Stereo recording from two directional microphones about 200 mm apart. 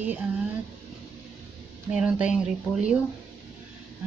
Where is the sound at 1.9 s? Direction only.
5° right (ahead or behind).